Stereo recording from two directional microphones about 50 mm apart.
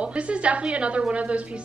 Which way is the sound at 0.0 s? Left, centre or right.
Right.